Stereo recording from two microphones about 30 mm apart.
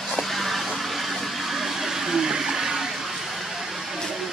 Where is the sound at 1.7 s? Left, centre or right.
Centre.